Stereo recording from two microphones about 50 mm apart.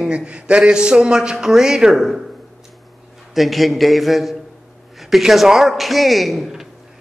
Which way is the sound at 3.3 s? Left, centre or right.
Centre.